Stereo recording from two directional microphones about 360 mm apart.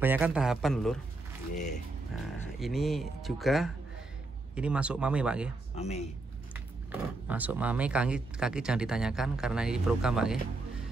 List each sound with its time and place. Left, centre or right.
0.0 s speech: centre
1.5 s speech: centre
2.6 s speech: centre
5.8 s speech: centre
6.5 s speech: centre